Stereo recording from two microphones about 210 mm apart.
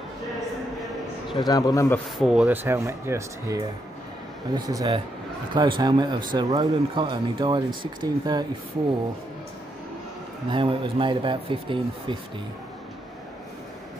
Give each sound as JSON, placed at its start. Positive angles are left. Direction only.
{"t": 1.3, "sound": "a man's voice", "side_deg": 20}
{"t": 2.1, "sound": "speech", "side_deg": 0}
{"t": 10.5, "sound": "speech", "side_deg": -25}